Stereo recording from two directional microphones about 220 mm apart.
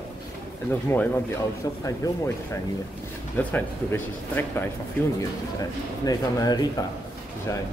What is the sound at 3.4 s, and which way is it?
Speech, 10° left (ahead or behind).